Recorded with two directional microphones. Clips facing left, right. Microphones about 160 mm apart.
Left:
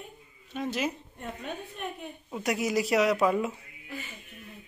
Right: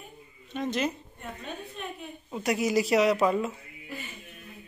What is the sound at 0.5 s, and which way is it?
Speech, 5° left (ahead or behind).